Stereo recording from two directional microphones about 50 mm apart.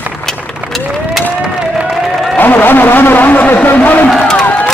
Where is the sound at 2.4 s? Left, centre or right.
Left.